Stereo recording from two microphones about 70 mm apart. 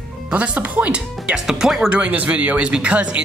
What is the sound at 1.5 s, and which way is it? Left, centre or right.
Speech, centre.